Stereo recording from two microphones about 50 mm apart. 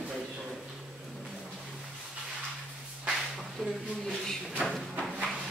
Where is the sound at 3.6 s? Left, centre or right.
Centre.